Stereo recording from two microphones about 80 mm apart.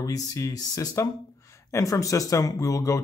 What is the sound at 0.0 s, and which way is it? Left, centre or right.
Speech, left.